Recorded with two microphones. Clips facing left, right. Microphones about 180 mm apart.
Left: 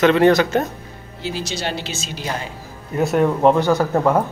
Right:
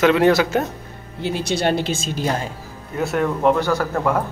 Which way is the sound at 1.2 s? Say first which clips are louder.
Right 5 dB; 55° right (ahead or behind).